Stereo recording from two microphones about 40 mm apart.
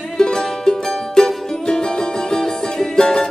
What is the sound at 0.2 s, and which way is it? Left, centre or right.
Music, centre.